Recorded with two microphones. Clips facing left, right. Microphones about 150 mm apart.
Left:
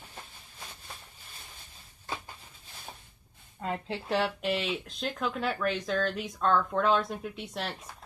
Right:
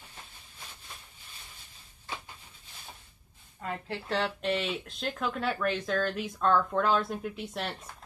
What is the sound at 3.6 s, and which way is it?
Speech, 25° left (ahead or behind).